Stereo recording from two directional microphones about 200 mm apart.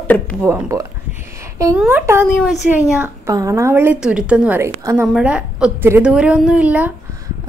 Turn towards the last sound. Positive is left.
turn(degrees=-5)  # may be behind; listen again after turning